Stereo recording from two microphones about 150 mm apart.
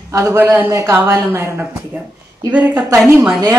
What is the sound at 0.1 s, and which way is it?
Speech, 20° right (ahead or behind).